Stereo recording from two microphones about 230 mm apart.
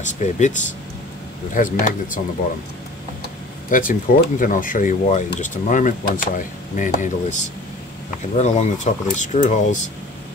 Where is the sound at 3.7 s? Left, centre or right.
Left.